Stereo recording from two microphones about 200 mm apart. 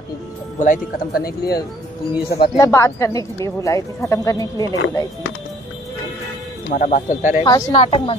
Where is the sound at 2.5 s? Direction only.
15° left (ahead or behind).